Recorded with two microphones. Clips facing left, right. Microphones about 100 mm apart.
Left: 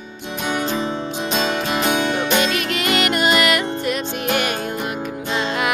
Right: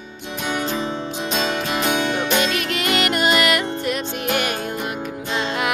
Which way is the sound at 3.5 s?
25° right (ahead or behind).